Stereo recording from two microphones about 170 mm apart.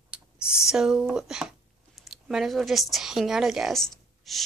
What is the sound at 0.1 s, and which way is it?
Speech, 5° right (ahead or behind).